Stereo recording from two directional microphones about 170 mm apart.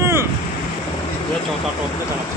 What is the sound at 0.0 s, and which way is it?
Waves, 15° right (ahead or behind).